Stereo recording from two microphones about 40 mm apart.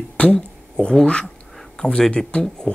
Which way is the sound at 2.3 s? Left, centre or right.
Left.